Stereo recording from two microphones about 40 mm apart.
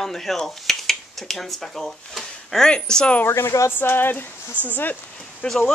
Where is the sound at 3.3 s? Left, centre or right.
Left.